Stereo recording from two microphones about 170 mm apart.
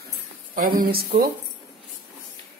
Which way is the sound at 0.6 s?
55° right (ahead or behind).